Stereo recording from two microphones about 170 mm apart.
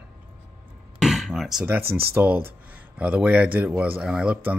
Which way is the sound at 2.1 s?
10° right (ahead or behind).